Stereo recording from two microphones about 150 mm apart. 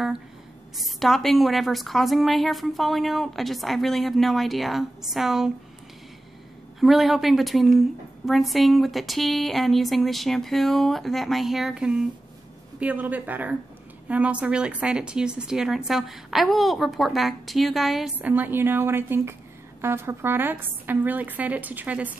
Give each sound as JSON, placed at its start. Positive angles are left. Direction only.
{"t": 0.7, "sound": "speech", "side_deg": 0}
{"t": 6.8, "sound": "a woman's voice", "side_deg": 0}